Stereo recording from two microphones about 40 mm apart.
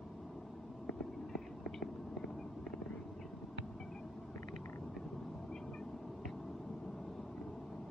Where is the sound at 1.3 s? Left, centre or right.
Centre.